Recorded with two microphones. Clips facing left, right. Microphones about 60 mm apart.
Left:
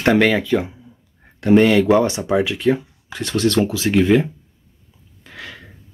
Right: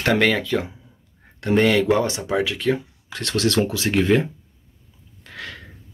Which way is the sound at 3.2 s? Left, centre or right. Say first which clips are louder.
Left 3 dB; centre.